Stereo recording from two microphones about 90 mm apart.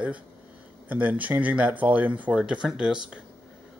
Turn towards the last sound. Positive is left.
turn(degrees=-10)  # may be behind; listen again after turning